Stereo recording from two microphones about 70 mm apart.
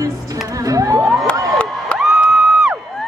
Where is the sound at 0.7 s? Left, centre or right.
Right.